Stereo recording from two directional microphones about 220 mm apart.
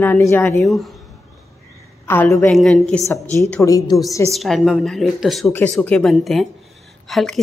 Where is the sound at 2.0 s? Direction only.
10° left (ahead or behind).